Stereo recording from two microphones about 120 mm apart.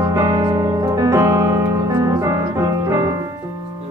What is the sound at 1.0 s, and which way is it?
Keyboard, 25° right (ahead or behind).